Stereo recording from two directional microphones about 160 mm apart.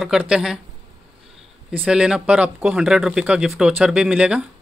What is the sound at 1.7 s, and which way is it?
Speech, 5° right (ahead or behind).